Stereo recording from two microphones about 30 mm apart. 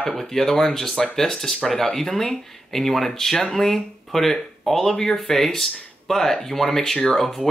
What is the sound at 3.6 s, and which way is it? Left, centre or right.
Speech, centre.